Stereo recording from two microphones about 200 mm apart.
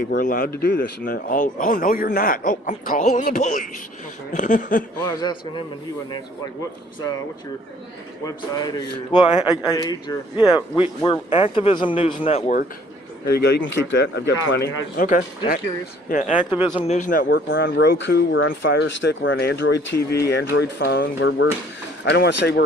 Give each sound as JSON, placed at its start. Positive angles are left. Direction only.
{"t": 0.1, "sound": "a man's voice", "side_deg": 45}
{"t": 5.0, "sound": "speech", "side_deg": 20}
{"t": 8.3, "sound": "speech", "side_deg": 20}
{"t": 13.2, "sound": "a man's voice", "side_deg": 55}